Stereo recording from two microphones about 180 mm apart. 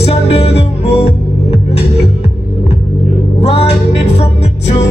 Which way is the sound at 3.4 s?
35° left (ahead or behind).